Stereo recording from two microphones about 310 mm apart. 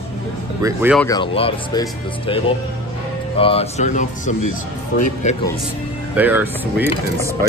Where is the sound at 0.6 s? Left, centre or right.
Centre.